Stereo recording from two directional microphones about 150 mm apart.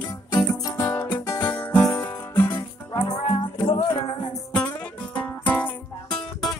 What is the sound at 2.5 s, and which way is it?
Music, 30° left (ahead or behind).